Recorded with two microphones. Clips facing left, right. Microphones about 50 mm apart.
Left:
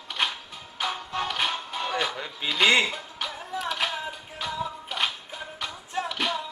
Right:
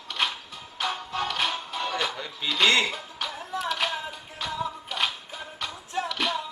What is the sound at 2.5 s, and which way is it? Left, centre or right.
Speech, centre.